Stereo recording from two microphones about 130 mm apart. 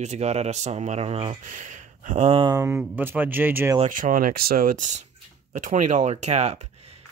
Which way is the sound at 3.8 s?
90° right.